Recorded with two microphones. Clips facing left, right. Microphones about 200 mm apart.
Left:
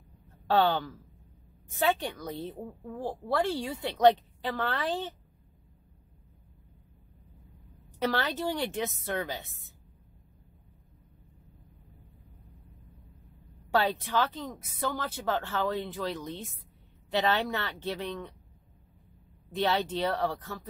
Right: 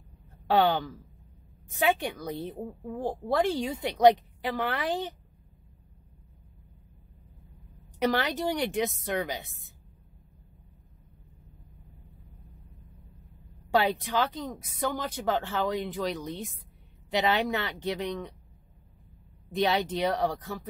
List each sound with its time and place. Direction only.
0.5 s a woman's voice: 15° right (ahead or behind)
8.0 s a woman's voice: 15° right (ahead or behind)
13.7 s a woman's voice: 15° right (ahead or behind)
19.5 s a woman's voice: 15° right (ahead or behind)